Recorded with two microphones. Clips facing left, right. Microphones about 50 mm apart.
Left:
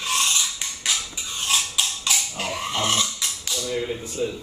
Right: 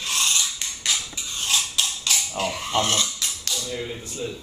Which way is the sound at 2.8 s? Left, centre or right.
Centre.